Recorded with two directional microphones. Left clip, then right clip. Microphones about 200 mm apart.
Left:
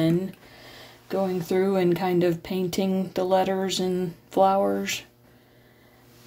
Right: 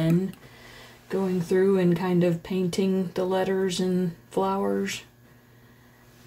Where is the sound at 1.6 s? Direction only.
50° left (ahead or behind).